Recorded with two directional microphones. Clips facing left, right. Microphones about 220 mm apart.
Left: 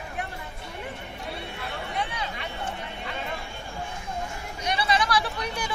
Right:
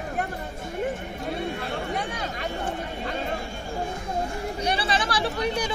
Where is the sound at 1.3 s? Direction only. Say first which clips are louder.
Right 8 dB; 45° right (ahead or behind).